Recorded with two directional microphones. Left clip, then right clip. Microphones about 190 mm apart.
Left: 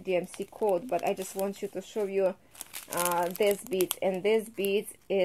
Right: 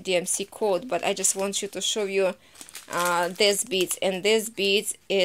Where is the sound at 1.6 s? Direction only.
30° right (ahead or behind).